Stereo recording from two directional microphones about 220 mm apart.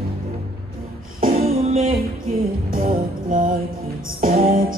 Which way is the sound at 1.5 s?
25° right (ahead or behind).